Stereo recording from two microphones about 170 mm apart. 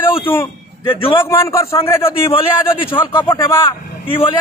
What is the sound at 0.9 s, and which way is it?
Speech, 30° left (ahead or behind).